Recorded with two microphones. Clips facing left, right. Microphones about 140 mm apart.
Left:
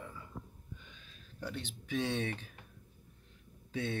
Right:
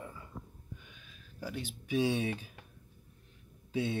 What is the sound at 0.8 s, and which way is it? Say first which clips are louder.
Speech: right 1 dB; 10° right (ahead or behind).